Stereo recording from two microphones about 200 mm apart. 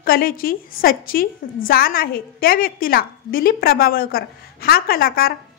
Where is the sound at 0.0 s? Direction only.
45° left (ahead or behind).